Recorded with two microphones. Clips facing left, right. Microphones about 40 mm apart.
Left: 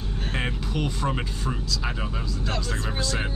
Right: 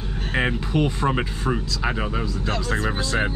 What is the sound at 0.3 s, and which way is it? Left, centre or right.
Speech, centre.